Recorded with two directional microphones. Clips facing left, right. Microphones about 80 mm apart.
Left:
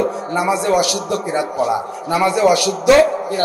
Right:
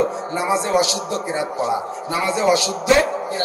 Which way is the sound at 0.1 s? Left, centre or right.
Right.